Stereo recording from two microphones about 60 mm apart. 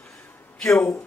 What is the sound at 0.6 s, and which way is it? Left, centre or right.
Speech, centre.